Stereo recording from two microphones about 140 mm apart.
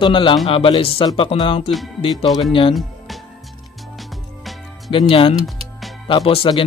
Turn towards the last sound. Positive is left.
turn(degrees=40)  # may be behind; listen again after turning